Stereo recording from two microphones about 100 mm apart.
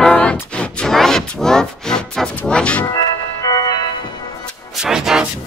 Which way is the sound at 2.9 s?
40° left (ahead or behind).